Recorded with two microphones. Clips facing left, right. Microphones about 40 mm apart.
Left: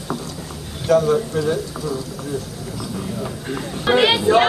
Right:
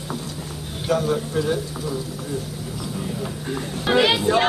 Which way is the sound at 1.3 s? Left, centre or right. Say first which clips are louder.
Left 2 dB; centre.